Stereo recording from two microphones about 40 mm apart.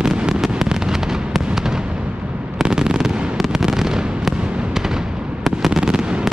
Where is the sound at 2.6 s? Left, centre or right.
Right.